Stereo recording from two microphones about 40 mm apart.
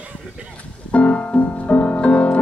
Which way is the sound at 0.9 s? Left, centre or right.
Left.